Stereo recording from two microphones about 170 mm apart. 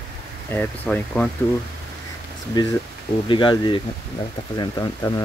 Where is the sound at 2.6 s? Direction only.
25° left (ahead or behind).